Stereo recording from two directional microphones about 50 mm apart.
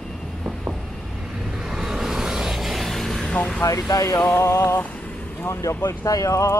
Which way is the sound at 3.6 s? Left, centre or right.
Left.